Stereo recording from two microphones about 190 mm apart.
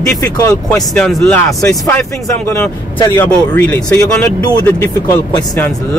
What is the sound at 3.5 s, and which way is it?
Speech, 10° left (ahead or behind).